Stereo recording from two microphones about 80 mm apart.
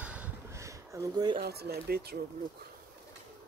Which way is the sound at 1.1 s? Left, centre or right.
Right.